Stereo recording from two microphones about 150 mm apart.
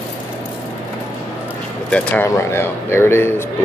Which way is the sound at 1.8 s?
10° left (ahead or behind).